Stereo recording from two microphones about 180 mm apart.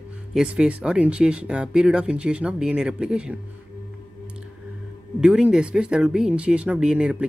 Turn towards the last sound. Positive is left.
turn(degrees=-5)  # may be behind; listen again after turning